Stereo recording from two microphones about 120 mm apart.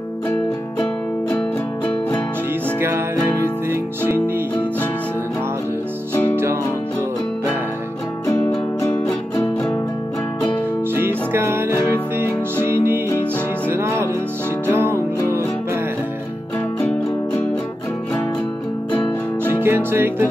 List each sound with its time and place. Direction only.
3.7 s music: 20° right (ahead or behind)
6.3 s music: 20° right (ahead or behind)
8.8 s music: 20° left (ahead or behind)
11.0 s music: 20° right (ahead or behind)
16.8 s music: 15° left (ahead or behind)
19.6 s music: 20° right (ahead or behind)